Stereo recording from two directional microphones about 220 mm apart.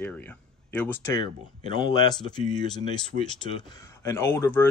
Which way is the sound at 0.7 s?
10° left (ahead or behind).